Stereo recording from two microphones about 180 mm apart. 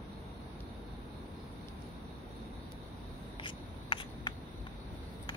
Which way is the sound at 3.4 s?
25° left (ahead or behind).